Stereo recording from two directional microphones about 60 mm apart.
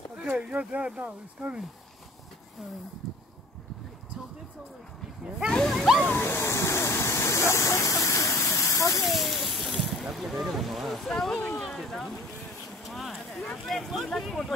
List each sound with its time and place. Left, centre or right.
0.1 s speech: centre
5.5 s speech: centre
5.8 s slosh: centre
6.0 s waterfall: left
8.7 s rain: left
9.0 s water: centre
10.0 s speech: centre
11.1 s speech: centre
11.5 s a sound: centre
13.7 s speech: centre